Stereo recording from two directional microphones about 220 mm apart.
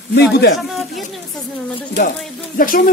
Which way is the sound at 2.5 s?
40° left (ahead or behind).